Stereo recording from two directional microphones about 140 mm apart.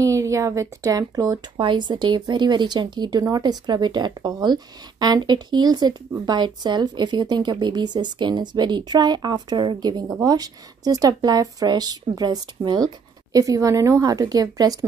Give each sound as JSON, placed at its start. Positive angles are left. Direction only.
{"t": 0.0, "sound": "a woman's voice", "side_deg": -20}